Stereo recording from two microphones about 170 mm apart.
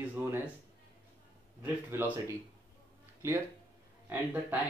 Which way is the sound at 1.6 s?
10° right (ahead or behind).